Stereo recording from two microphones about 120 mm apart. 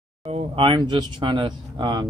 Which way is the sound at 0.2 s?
50° right (ahead or behind).